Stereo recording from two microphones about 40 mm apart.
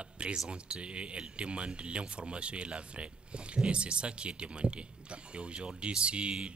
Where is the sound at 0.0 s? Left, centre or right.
Right.